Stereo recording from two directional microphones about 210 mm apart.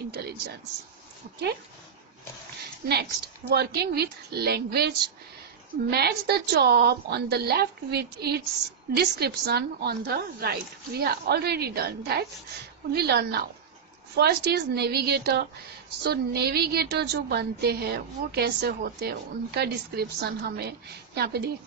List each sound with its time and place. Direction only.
2.6 s a woman's voice: 50° right (ahead or behind)